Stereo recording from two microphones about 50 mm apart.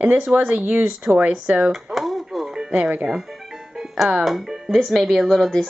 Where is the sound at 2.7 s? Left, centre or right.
Right.